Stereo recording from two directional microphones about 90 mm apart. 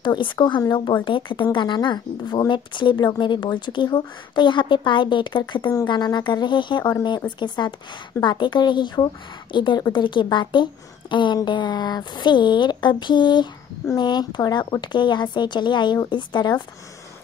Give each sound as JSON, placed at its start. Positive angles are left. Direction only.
{"t": 0.0, "sound": "speech", "side_deg": 60}